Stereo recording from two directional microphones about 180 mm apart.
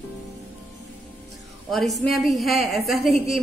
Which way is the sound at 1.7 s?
Centre (ahead or behind).